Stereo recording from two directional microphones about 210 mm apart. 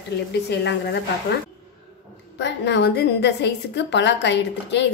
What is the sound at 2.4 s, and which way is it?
A woman's voice, 55° left (ahead or behind).